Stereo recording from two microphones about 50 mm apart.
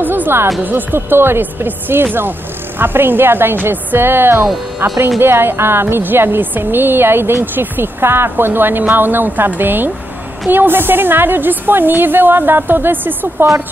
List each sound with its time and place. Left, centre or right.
0.0 s music: right
0.6 s speech: right
0.9 s speech: right